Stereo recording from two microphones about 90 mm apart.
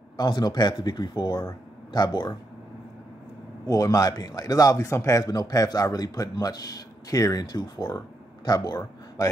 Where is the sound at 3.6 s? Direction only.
40° left (ahead or behind).